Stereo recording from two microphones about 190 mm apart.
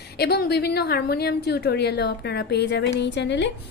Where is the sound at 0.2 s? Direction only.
55° left (ahead or behind).